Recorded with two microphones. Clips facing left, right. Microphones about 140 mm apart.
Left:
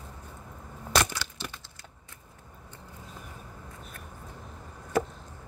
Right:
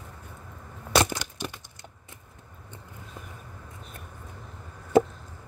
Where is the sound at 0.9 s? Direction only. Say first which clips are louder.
Right 3 dB; 20° right (ahead or behind).